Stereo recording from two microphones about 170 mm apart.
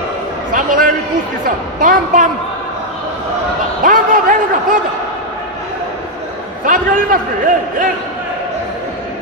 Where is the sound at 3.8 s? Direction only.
55° right (ahead or behind).